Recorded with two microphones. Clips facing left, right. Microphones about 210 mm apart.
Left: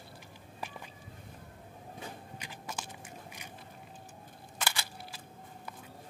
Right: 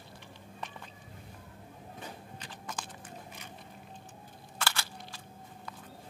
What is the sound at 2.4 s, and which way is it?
Biting, 10° left (ahead or behind).